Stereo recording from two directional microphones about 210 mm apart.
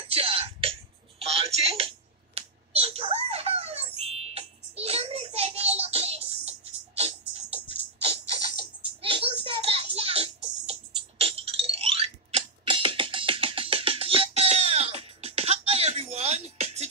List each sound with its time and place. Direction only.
0.1 s music: 25° right (ahead or behind)
1.2 s a sound: 30° right (ahead or behind)
4.0 s child singing: 30° right (ahead or behind)
9.0 s music: 25° right (ahead or behind)